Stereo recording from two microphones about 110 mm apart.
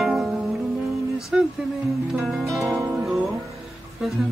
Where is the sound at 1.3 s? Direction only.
5° right (ahead or behind).